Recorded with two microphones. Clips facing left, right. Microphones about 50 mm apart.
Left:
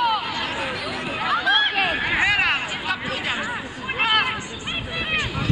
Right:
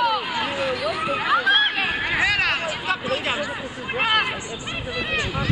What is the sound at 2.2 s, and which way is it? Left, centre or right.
Hubbub, centre.